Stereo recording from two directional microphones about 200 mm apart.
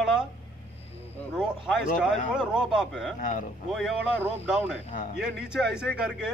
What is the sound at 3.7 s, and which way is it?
Speech, centre (ahead or behind).